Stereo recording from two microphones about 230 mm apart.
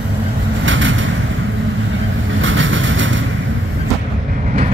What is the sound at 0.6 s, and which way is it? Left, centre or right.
Vehicle, right.